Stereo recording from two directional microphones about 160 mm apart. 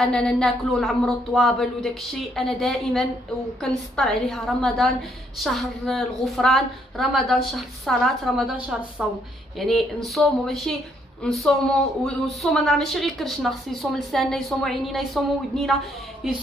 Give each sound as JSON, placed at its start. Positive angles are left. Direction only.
{"t": 0.0, "sound": "speech", "side_deg": 5}